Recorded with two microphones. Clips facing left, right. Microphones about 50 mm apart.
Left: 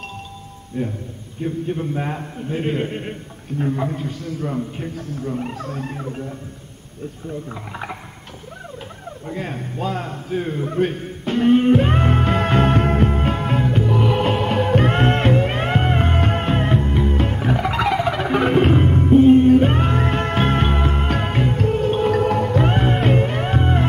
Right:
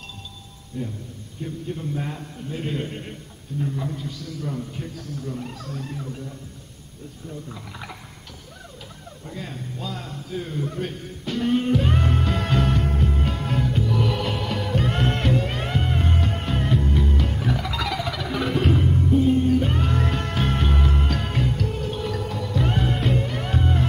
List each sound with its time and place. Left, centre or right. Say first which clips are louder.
0.8 s a man's voice: left 6 dB; left
3.5 s a man's voice: left 6 dB; left
7.4 s a man's voice: left 7 dB; left
9.3 s a sound: left 6 dB; left